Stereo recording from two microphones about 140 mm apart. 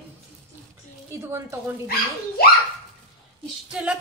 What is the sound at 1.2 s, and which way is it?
Speech, 20° right (ahead or behind).